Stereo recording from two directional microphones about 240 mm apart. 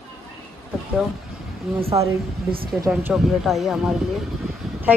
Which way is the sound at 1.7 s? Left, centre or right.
Centre.